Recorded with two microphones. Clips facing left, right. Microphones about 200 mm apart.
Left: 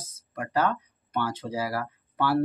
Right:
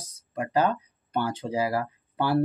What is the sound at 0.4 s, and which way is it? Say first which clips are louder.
Speech: right 2 dB; 15° right (ahead or behind).